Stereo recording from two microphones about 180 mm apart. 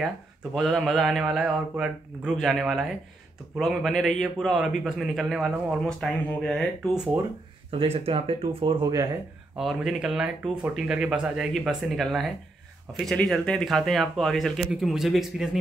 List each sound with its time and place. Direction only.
0.6 s a man's voice: centre (ahead or behind)
7.7 s speech: 30° right (ahead or behind)
9.6 s a man's voice: centre (ahead or behind)